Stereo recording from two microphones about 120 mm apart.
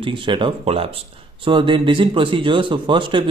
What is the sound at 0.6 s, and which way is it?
Speech, 55° right (ahead or behind).